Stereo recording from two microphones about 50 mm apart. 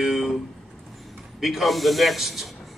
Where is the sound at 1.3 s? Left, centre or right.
Centre.